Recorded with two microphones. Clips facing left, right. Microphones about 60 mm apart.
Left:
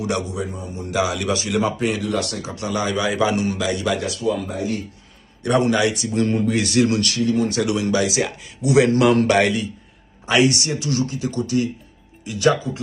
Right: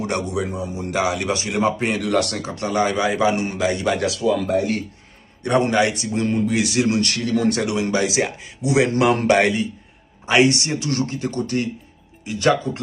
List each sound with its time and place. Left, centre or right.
0.3 s speech: right
1.0 s a man's voice: right
2.0 s speech: right
2.5 s a man's voice: right
4.0 s speech: right
5.4 s a man's voice: right
6.2 s speech: centre
7.2 s speech: right
7.6 s a man's voice: right